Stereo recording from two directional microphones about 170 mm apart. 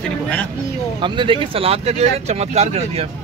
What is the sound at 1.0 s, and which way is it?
Speech, 30° right (ahead or behind).